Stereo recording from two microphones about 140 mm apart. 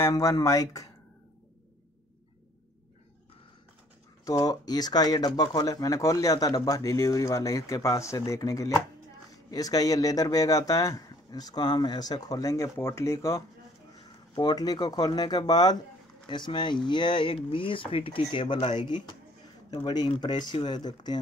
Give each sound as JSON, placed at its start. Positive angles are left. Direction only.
{"t": 0.0, "sound": "speech", "side_deg": 25}
{"t": 4.2, "sound": "speech", "side_deg": 25}